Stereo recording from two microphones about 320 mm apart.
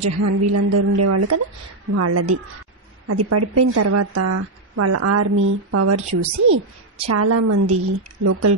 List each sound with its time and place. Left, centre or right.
0.0 s a woman's voice: right
7.1 s a woman's voice: right